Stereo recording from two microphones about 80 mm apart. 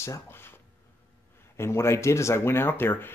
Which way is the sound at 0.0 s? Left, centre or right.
Left.